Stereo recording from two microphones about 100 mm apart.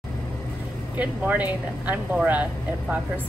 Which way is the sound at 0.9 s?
15° right (ahead or behind).